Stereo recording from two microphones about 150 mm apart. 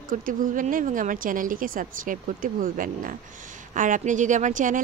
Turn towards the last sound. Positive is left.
turn(degrees=-60)  # may be behind; listen again after turning